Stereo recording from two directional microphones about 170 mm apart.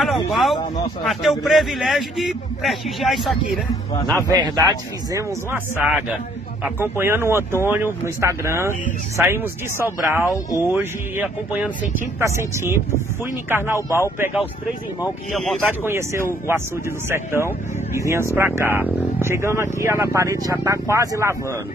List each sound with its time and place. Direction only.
0.0 s a man's voice: centre (ahead or behind)
4.3 s a man's voice: 20° right (ahead or behind)
10.2 s speech: 20° left (ahead or behind)
10.7 s speech: 10° right (ahead or behind)
13.7 s speech: 15° left (ahead or behind)
15.3 s a man's voice: centre (ahead or behind)
15.8 s speech: 15° right (ahead or behind)